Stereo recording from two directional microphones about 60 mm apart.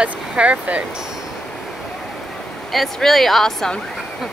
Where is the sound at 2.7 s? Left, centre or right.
Centre.